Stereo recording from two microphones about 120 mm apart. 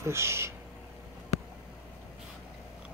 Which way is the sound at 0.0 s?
20° right (ahead or behind).